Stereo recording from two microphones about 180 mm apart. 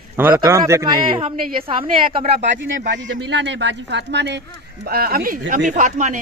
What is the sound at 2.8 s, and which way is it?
Speech, 75° right (ahead or behind).